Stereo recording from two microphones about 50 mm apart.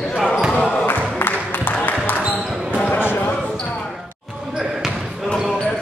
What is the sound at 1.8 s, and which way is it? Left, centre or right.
Basketball bounce, left.